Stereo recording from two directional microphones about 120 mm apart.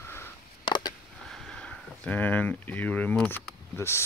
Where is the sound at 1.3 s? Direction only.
5° left (ahead or behind).